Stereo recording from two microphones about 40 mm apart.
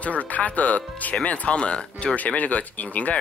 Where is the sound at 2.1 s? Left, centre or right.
Left.